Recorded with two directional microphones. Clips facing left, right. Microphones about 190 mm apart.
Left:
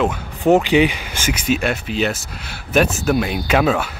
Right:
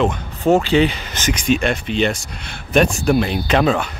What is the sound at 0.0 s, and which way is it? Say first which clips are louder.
Speech: even; 10° left (ahead or behind).